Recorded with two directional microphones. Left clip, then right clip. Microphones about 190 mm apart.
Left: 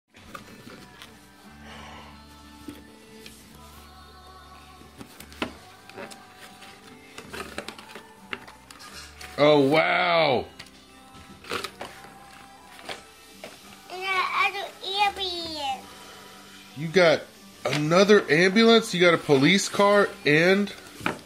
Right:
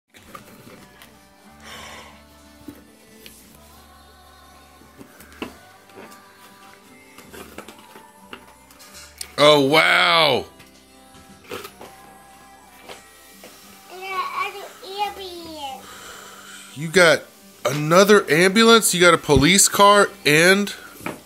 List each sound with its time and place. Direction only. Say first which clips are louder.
1.7 s music: right 6 dB; 40° right (ahead or behind)
9.3 s speech: right 5 dB; 25° right (ahead or behind)
14.1 s babbling: left 1 dB; 5° left (ahead or behind)
15.0 s child singing: left 3 dB; 5° left (ahead or behind)
16.8 s speech: right 5 dB; 30° right (ahead or behind)